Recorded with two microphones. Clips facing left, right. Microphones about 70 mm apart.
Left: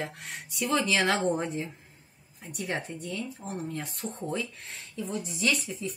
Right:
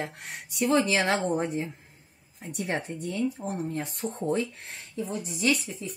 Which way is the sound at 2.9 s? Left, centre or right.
Right.